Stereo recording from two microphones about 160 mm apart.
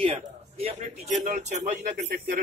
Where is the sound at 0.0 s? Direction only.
35° right (ahead or behind).